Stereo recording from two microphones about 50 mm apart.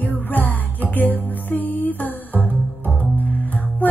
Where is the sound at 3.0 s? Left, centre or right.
Left.